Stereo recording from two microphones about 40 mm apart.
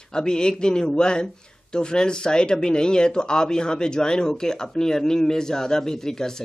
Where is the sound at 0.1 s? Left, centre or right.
Centre.